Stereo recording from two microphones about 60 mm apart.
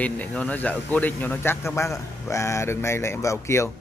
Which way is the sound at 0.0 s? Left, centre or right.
Left.